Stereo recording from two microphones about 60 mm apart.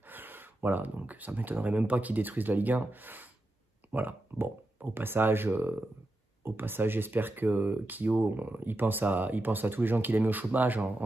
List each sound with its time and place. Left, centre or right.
0.0 s speech: right